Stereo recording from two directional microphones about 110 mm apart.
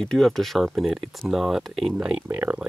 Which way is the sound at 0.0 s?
5° left (ahead or behind).